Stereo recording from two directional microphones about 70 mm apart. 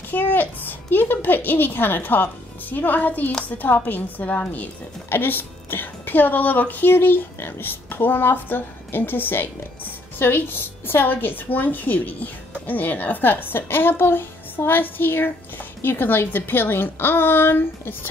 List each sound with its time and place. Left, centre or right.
0.1 s a child's voice: left